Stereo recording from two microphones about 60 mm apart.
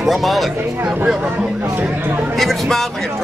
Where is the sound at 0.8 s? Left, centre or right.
Right.